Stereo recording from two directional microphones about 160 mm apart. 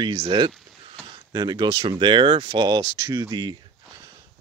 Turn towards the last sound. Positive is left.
turn(degrees=-25)  # may be behind; listen again after turning